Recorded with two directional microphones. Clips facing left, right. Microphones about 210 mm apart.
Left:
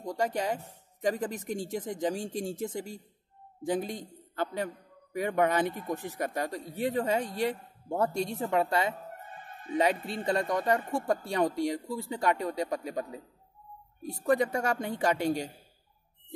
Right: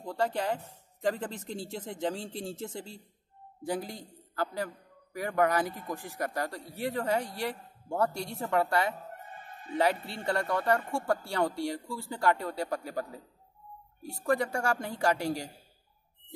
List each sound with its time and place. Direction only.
0.0 s a man's voice: 15° left (ahead or behind)
14.2 s a man's voice: 20° left (ahead or behind)